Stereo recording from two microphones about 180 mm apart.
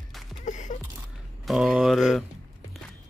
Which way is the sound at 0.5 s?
45° left (ahead or behind).